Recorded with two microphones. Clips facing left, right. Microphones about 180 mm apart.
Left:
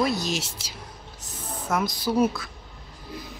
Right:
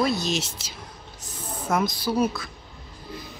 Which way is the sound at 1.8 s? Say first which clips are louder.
Left 1 dB; 20° left (ahead or behind).